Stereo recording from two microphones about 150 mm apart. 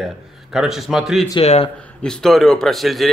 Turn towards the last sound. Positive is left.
turn(degrees=0)  # may be behind; listen again after turning